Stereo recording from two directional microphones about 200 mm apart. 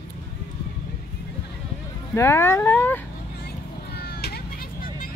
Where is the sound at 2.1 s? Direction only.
15° left (ahead or behind).